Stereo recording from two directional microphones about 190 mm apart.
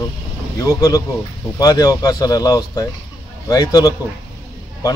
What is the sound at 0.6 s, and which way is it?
Speech, 20° left (ahead or behind).